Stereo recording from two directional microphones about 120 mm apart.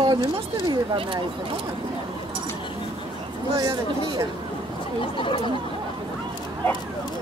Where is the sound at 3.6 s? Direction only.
35° right (ahead or behind).